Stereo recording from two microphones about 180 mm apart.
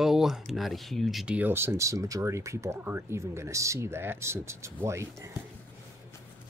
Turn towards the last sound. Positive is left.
turn(degrees=-15)  # may be behind; listen again after turning